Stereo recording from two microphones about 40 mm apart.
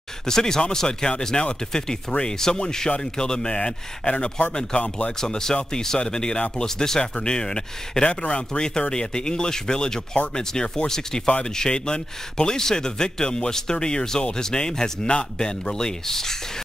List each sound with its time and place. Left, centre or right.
0.3 s speech: centre; by 4.5 s left
5.2 s speech: centre